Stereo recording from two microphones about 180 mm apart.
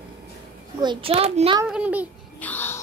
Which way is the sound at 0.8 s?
30° right (ahead or behind).